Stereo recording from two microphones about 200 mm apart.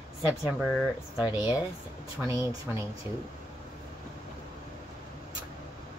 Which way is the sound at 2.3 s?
15° right (ahead or behind).